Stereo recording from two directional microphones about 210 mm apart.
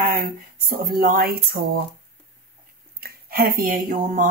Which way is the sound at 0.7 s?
45° right (ahead or behind).